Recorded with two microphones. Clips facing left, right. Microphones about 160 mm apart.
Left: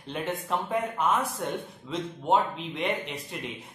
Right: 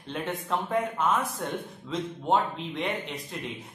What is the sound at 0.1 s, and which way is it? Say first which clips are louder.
A man's voice: even; centre (ahead or behind).